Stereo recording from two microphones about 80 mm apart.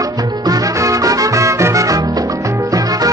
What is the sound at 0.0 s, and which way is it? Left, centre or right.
Music, right.